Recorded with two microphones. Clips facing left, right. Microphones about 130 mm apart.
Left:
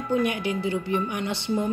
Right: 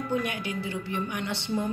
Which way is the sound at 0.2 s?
20° left (ahead or behind).